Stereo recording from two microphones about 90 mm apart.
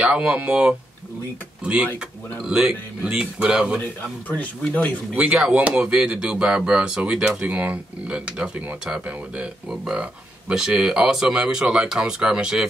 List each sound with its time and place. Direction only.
0.0 s speech: 10° right (ahead or behind)
4.3 s speech: 15° left (ahead or behind)
5.1 s speech: 10° right (ahead or behind)